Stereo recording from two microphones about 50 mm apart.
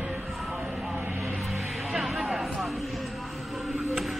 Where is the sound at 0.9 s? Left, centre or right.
Right.